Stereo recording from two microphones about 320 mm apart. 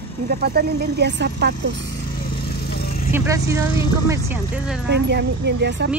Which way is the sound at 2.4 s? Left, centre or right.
Left.